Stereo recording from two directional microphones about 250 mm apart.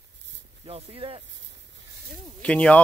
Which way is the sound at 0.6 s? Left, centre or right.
Right.